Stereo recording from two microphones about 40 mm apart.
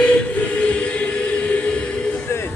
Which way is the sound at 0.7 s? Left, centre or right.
Left.